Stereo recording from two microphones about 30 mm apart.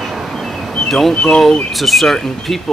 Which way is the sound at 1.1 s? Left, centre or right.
Left.